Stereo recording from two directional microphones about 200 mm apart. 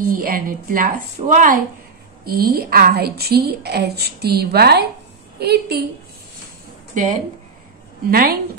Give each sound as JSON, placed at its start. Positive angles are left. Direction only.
{"t": 0.0, "sound": "a woman's voice", "side_deg": -45}
{"t": 6.9, "sound": "a woman's voice", "side_deg": -40}